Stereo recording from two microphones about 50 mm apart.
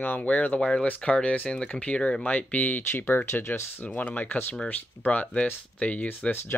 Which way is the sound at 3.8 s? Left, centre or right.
Left.